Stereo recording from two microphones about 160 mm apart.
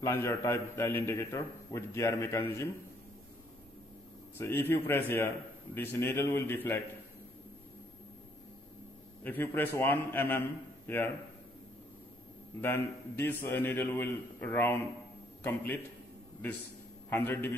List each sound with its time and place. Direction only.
0.0 s a man's voice: 15° left (ahead or behind)
4.4 s a man's voice: 15° left (ahead or behind)
9.2 s a man's voice: 15° left (ahead or behind)
12.6 s a man's voice: 10° left (ahead or behind)
17.1 s a man's voice: 10° left (ahead or behind)